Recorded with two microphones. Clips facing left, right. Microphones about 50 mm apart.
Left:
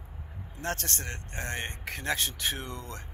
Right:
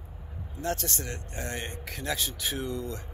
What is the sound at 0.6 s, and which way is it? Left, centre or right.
Speech, left.